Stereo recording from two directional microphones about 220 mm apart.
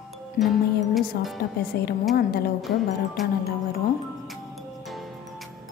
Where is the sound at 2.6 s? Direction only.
Centre (ahead or behind).